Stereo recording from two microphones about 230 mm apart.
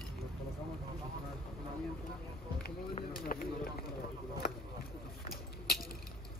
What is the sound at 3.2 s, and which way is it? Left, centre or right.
Run, left.